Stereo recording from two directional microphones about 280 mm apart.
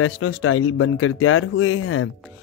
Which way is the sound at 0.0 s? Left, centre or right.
Left.